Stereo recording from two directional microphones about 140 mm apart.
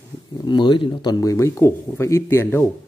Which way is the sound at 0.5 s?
35° left (ahead or behind).